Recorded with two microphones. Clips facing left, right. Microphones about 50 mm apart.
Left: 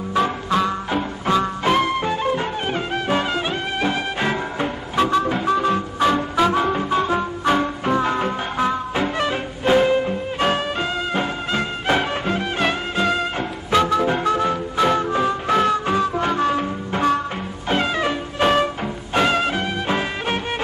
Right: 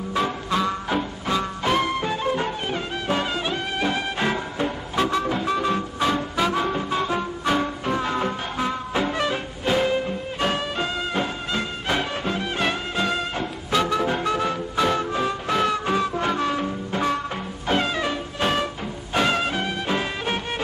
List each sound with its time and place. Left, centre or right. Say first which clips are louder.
0.1 s music: left 4 dB; left
8.9 s music: left 2 dB; centre
12.5 s music: left 3 dB; centre
13.4 s music: left 4 dB; left
18.0 s music: left 5 dB; left
19.1 s music: left 3 dB; centre